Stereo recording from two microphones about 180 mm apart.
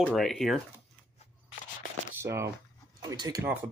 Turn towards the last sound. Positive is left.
turn(degrees=-20)  # may be behind; listen again after turning